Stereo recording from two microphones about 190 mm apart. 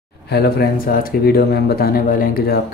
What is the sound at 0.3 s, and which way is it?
Speech, 55° left (ahead or behind).